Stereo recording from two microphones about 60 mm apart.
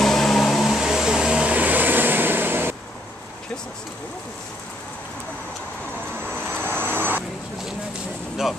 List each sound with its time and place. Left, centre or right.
0.0 s vehicle: centre; by 2.7 s right
6.4 s vehicle: right